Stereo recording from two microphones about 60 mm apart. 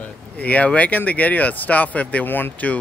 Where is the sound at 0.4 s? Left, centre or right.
Left.